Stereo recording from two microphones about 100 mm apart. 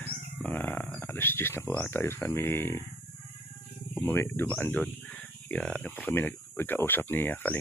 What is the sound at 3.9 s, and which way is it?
Speech, 20° left (ahead or behind).